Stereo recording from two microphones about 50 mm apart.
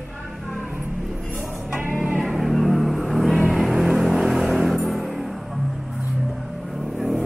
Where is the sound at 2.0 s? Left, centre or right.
Centre.